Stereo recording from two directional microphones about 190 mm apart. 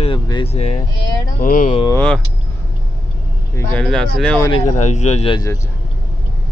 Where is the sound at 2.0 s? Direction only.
5° left (ahead or behind).